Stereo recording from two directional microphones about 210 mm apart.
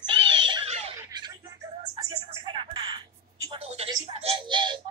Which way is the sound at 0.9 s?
20° right (ahead or behind).